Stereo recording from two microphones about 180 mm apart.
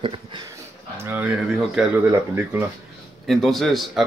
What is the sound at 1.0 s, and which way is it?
Speech, 10° right (ahead or behind).